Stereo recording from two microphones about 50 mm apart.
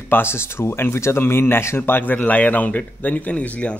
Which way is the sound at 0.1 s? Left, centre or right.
Left.